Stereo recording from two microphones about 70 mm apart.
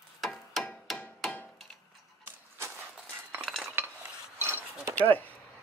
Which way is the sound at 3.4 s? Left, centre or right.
Centre.